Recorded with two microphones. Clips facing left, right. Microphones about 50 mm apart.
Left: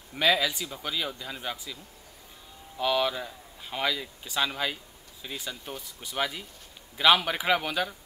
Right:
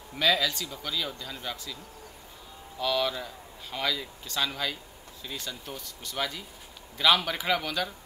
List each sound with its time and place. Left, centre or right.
0.1 s speech: centre
2.8 s speech: centre